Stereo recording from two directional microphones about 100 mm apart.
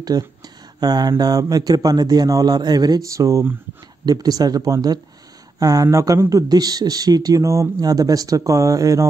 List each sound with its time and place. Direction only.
0.1 s speech: 35° right (ahead or behind)
6.5 s speech: 40° right (ahead or behind)